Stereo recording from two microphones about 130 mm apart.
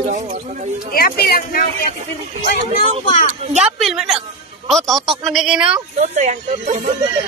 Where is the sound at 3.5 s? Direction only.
5° right (ahead or behind).